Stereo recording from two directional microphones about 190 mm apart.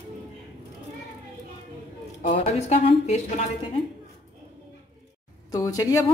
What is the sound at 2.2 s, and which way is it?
Speech, 40° left (ahead or behind).